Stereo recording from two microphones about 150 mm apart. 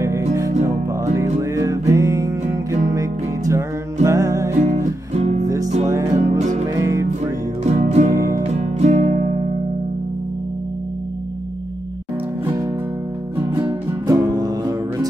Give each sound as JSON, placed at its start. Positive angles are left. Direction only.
{"t": 0.0, "sound": "music", "side_deg": -20}
{"t": 4.6, "sound": "music", "side_deg": -50}
{"t": 5.9, "sound": "music", "side_deg": -20}
{"t": 6.2, "sound": "music", "side_deg": -50}
{"t": 6.7, "sound": "music", "side_deg": -20}
{"t": 7.6, "sound": "music", "side_deg": -50}
{"t": 8.1, "sound": "music", "side_deg": -20}
{"t": 8.5, "sound": "music", "side_deg": -50}
{"t": 13.7, "sound": "music", "side_deg": -25}